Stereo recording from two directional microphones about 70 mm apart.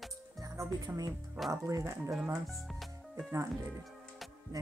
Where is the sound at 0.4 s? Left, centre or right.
Right.